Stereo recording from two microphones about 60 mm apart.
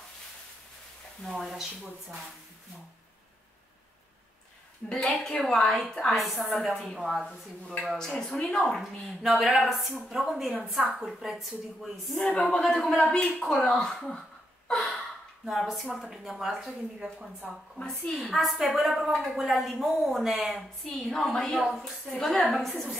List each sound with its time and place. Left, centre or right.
1.2 s speech: centre
5.0 s a man's voice: centre
7.0 s speech: centre
7.2 s a man's voice: centre
9.2 s speech: centre
12.4 s a man's voice: centre
14.7 s gasp: centre
15.4 s speech: centre
17.7 s a woman's voice: centre